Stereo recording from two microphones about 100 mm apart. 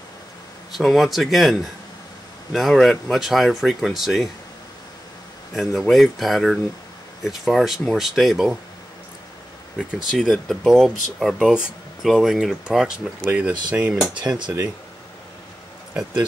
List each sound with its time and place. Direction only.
0.7 s speech: centre (ahead or behind)
5.5 s speech: centre (ahead or behind)
10.1 s speech: centre (ahead or behind); by 14.4 s 15° right (ahead or behind)